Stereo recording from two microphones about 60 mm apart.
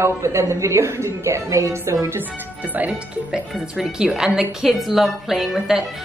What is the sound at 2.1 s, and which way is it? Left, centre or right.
Speech, right.